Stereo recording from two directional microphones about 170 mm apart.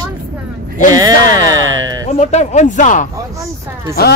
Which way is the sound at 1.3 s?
25° right (ahead or behind).